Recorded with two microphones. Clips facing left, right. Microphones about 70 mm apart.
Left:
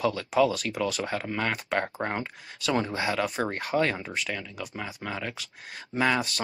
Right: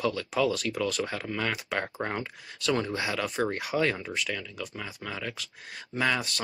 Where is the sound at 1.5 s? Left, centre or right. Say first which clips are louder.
Left 3 dB; centre.